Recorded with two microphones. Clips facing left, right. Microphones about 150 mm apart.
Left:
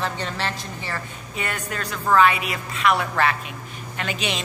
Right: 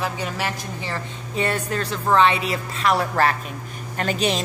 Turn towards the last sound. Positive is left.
turn(degrees=-40)  # may be behind; listen again after turning